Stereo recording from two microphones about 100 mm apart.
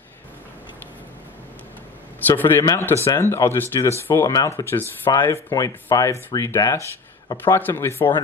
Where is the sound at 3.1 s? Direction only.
25° left (ahead or behind).